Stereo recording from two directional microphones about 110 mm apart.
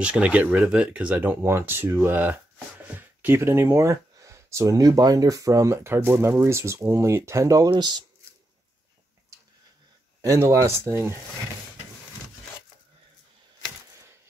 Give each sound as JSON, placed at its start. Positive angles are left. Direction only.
{"t": 0.0, "sound": "speech", "side_deg": -10}
{"t": 7.7, "sound": "speech", "side_deg": -45}
{"t": 10.2, "sound": "speech", "side_deg": -25}